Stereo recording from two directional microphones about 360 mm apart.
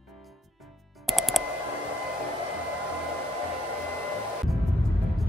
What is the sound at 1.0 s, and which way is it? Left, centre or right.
Music, centre.